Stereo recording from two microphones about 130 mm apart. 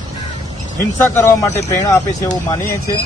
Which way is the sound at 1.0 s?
20° left (ahead or behind).